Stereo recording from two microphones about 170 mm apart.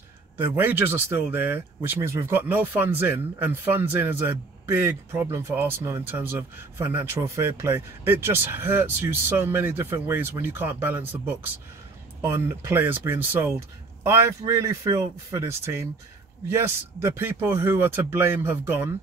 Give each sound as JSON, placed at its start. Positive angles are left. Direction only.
{"t": 0.4, "sound": "speech", "side_deg": -10}